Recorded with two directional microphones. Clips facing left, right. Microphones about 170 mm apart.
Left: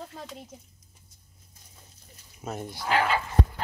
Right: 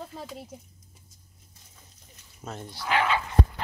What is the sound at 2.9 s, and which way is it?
Speech, 35° left (ahead or behind).